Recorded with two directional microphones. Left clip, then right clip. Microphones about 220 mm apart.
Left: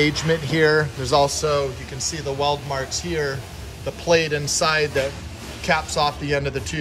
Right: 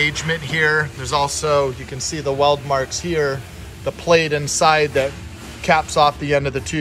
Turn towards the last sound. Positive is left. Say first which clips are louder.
# right 4 dB
turn(degrees=5)  # may be behind; listen again after turning